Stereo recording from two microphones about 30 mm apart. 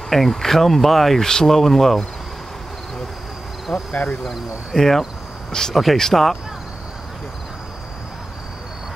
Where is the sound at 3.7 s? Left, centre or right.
Centre.